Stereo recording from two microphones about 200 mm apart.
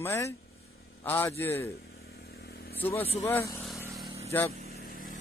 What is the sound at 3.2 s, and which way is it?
Speech, 15° left (ahead or behind).